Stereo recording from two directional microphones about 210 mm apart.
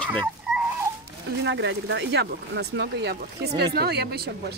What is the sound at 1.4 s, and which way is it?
Speech, 55° right (ahead or behind).